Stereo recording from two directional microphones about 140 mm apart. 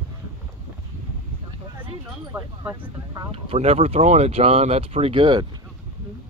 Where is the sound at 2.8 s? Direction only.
40° right (ahead or behind).